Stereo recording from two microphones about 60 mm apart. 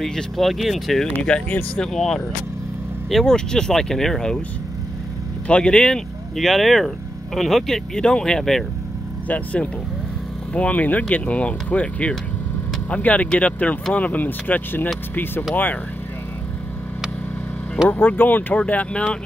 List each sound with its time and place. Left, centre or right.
0.0 s speech: centre
1.3 s speech: centre
5.5 s speech: centre
6.3 s speech: centre
9.3 s speech: left
17.8 s speech: left